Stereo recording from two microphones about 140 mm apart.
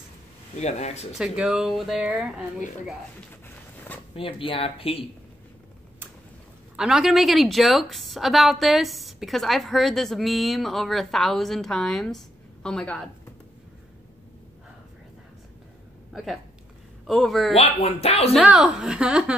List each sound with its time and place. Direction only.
0.6 s speech: 50° left (ahead or behind)
1.1 s a woman's voice: 5° right (ahead or behind)
4.1 s speech: 40° left (ahead or behind)
6.8 s a woman's voice: 5° right (ahead or behind)
16.1 s a woman's voice: 5° right (ahead or behind)
17.6 s speech: 45° left (ahead or behind)
18.3 s a woman's voice: 5° right (ahead or behind)